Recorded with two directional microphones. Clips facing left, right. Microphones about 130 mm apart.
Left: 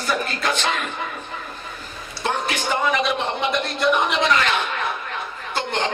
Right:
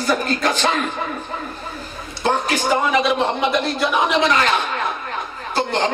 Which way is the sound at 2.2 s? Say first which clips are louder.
Right 5 dB; 35° right (ahead or behind).